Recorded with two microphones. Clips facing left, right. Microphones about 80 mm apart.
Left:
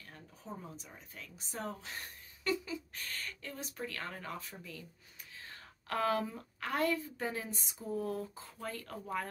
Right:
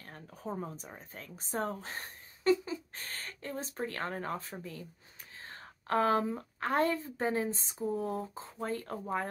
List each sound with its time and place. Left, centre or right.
0.0 s a woman's voice: right